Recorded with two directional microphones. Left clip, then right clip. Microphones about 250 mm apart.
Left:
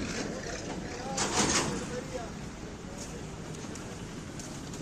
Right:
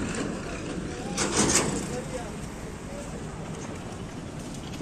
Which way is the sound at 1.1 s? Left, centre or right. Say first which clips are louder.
Right 3 dB; right.